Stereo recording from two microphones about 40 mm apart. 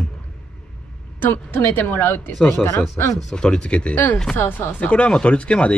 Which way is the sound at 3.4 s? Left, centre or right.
Left.